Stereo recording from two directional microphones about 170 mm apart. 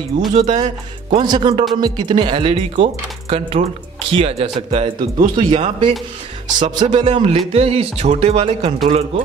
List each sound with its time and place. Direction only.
0.3 s speech: 35° right (ahead or behind)
7.1 s speech: 35° right (ahead or behind)